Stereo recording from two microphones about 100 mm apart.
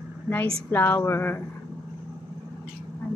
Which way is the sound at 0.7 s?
20° left (ahead or behind).